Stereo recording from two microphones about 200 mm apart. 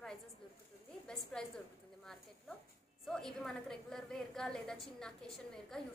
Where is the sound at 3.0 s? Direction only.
Centre (ahead or behind).